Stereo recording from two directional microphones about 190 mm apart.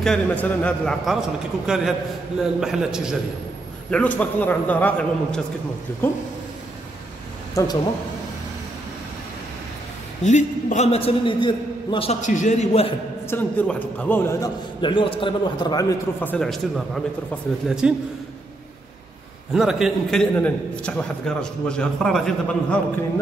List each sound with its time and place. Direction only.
0.0 s a man's voice: 5° left (ahead or behind)
3.9 s a man's voice: 5° left (ahead or behind)
7.6 s a man's voice: 20° left (ahead or behind)
10.2 s a man's voice: 40° left (ahead or behind)
13.3 s a man's voice: 10° left (ahead or behind)
14.8 s a man's voice: 25° left (ahead or behind); by 17.9 s 5° right (ahead or behind)
19.5 s a man's voice: centre (ahead or behind)